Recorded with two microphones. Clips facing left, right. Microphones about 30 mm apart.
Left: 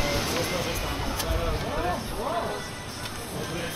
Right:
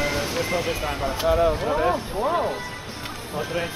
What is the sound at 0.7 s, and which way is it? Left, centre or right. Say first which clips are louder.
Speech: right 5 dB; centre.